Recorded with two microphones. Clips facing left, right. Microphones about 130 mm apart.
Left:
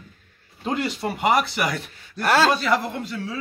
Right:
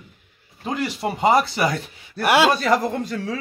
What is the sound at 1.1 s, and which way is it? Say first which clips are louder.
Speech: right 3 dB; 30° right (ahead or behind).